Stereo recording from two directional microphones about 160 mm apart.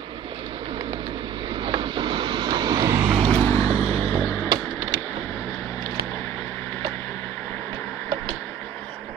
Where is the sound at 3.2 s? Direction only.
35° right (ahead or behind).